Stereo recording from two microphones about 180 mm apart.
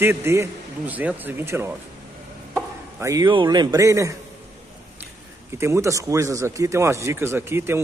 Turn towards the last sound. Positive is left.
turn(degrees=-15)  # may be behind; listen again after turning